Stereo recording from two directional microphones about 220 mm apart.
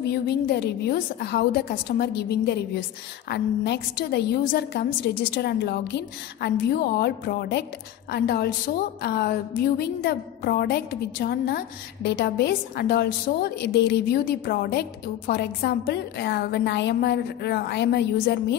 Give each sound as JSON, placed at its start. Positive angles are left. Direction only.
{"t": 0.1, "sound": "a woman's voice", "side_deg": 50}